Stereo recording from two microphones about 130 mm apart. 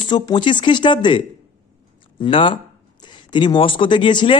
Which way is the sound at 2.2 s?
40° left (ahead or behind).